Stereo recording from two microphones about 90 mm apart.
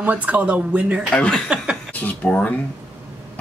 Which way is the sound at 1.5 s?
10° right (ahead or behind).